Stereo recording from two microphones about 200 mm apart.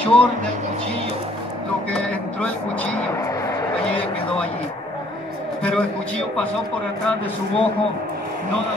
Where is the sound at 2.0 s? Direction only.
5° left (ahead or behind).